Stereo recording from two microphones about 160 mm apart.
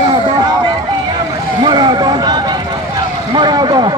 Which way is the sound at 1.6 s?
25° right (ahead or behind).